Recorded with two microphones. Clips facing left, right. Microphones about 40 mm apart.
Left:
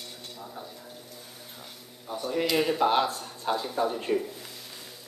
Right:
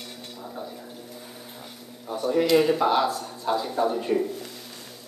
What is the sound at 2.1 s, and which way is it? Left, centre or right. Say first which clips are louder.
Speech: right 6 dB; centre.